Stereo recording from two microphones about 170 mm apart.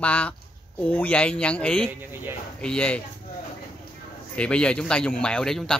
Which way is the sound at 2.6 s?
5° left (ahead or behind).